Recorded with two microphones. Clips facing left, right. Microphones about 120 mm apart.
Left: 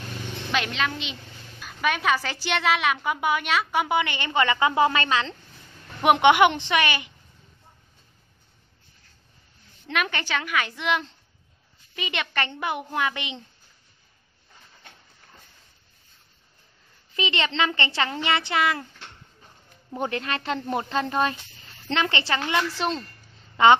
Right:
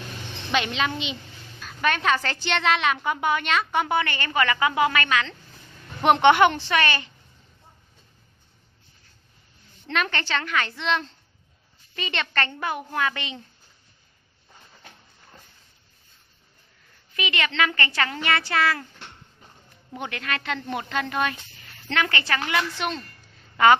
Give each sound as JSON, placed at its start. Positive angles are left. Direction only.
{"t": 0.5, "sound": "a woman's voice", "side_deg": 0}
{"t": 1.6, "sound": "a woman's voice", "side_deg": 10}
{"t": 6.0, "sound": "a woman's voice", "side_deg": 15}
{"t": 9.8, "sound": "a woman's voice", "side_deg": 10}
{"t": 17.1, "sound": "a woman's voice", "side_deg": 25}
{"t": 19.9, "sound": "a woman's voice", "side_deg": 30}